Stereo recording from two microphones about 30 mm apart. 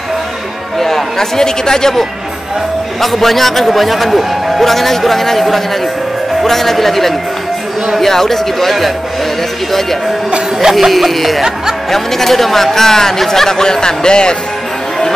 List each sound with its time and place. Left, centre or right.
0.7 s speech: centre
3.0 s a man's voice: centre
10.6 s a man's voice: centre; by 14.3 s left